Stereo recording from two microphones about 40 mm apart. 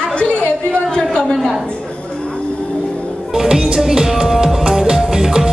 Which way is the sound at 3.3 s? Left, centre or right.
Centre.